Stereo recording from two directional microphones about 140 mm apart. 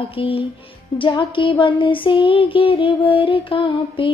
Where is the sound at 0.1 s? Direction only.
40° left (ahead or behind).